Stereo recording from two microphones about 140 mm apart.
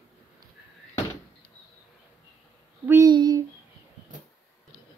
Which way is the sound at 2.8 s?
20° right (ahead or behind).